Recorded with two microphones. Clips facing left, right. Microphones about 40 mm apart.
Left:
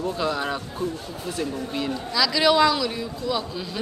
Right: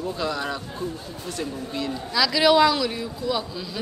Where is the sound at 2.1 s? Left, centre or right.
Centre.